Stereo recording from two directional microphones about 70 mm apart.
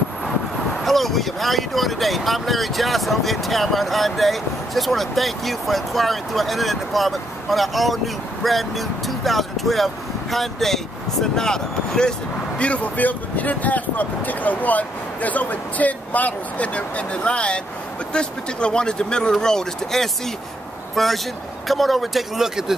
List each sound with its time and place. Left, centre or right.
0.8 s speech: centre
12.5 s speech: centre